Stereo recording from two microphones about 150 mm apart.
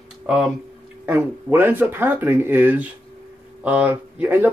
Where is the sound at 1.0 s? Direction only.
15° right (ahead or behind).